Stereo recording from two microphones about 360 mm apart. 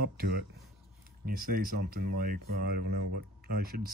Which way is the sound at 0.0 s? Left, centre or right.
Right.